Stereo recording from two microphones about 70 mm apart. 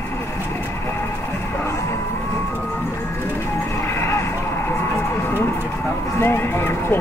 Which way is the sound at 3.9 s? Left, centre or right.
Left.